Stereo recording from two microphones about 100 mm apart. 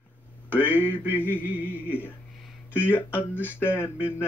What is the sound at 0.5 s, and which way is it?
Mantra, 20° left (ahead or behind).